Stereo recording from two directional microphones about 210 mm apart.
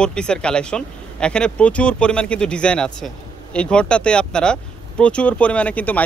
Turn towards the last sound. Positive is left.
turn(degrees=5)  # may be behind; listen again after turning